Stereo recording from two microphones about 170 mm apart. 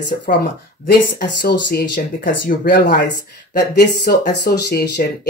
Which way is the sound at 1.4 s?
60° left (ahead or behind).